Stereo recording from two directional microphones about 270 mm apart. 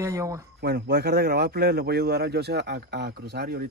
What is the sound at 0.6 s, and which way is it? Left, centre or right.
Speech, right.